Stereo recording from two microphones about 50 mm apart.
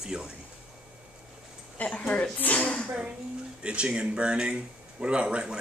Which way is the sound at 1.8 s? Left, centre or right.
Left.